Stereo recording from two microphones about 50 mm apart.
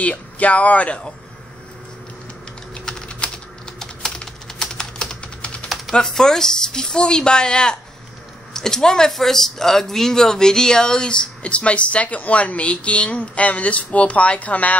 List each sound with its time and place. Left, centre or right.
0.0 s speech: left
2.7 s typing: centre
5.9 s speech: centre; by 14.8 s left